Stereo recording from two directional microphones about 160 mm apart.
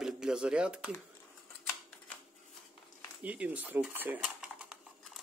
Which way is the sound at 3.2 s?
10° right (ahead or behind).